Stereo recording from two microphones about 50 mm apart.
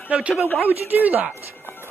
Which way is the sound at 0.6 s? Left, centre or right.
Right.